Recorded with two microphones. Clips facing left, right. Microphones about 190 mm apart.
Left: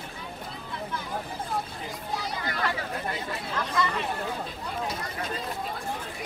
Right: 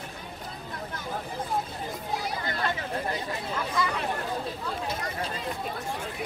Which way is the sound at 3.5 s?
5° right (ahead or behind).